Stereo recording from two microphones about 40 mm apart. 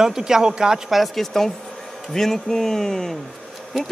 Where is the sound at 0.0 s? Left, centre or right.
Centre.